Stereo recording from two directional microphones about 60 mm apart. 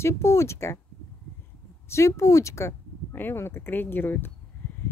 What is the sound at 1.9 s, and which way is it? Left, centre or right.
Speech, left.